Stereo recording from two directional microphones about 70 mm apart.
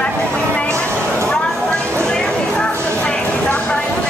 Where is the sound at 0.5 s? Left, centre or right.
Centre.